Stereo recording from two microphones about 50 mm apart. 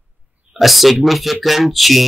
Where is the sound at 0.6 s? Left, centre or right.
Centre.